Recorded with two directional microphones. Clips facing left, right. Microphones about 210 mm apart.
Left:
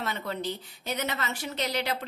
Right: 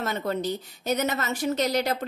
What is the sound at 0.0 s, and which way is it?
A woman's voice, 45° right (ahead or behind).